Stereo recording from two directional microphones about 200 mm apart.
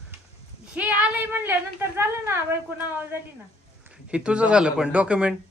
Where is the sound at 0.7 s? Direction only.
5° right (ahead or behind).